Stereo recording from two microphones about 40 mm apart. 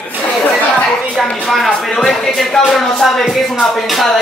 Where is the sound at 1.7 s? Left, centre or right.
Centre.